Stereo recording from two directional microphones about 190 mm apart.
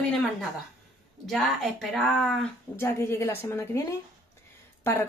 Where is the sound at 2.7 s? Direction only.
15° left (ahead or behind).